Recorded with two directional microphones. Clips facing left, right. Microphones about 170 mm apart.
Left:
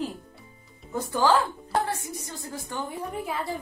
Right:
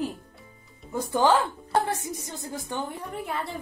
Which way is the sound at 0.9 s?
20° right (ahead or behind).